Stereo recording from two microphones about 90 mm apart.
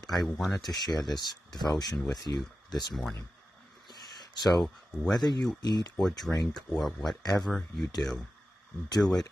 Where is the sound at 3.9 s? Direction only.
50° left (ahead or behind).